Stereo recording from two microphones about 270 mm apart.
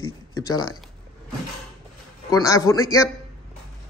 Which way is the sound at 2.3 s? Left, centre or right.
Centre.